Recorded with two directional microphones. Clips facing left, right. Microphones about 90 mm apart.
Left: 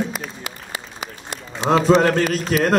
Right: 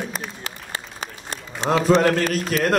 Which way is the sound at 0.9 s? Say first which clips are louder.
Left 1 dB; 40° right (ahead or behind).